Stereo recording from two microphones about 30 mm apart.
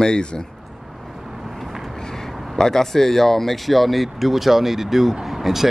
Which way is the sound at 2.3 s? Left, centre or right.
Centre.